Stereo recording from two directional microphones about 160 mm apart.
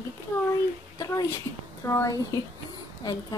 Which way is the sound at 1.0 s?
20° left (ahead or behind).